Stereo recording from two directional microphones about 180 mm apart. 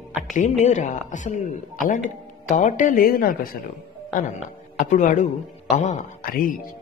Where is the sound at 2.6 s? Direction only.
40° left (ahead or behind).